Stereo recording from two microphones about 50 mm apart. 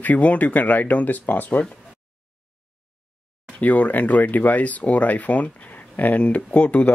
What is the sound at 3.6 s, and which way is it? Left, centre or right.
Speech, left.